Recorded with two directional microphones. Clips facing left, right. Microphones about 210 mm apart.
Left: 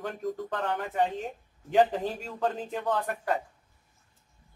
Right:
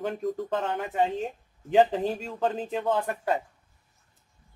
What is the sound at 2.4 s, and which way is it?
Speech, 20° right (ahead or behind).